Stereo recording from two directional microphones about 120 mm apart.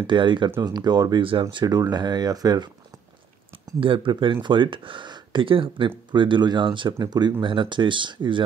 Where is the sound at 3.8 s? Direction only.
45° right (ahead or behind).